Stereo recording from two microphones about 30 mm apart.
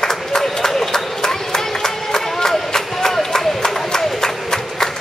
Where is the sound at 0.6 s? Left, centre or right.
Centre.